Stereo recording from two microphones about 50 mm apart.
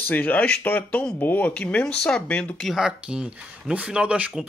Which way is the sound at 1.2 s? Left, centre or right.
Left.